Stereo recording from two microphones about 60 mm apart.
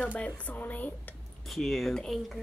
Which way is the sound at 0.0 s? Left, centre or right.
Left.